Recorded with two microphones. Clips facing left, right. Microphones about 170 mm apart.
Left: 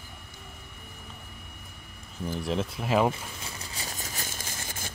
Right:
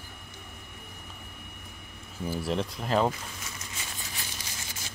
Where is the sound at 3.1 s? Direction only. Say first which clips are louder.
Left 2 dB; 35° left (ahead or behind); by 4.9 s 50° left (ahead or behind).